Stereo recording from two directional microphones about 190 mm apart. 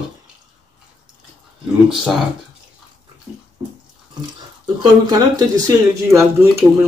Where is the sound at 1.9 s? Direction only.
Centre (ahead or behind).